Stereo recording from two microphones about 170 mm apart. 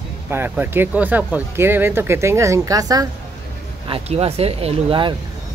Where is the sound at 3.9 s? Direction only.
35° right (ahead or behind).